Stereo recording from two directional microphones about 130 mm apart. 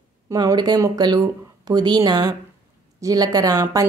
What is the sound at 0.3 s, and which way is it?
Speech, 30° right (ahead or behind).